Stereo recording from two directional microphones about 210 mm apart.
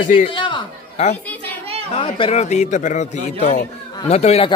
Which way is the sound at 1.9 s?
25° left (ahead or behind).